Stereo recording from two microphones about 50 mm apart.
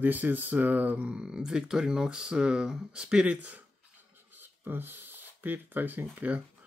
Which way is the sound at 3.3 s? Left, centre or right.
Right.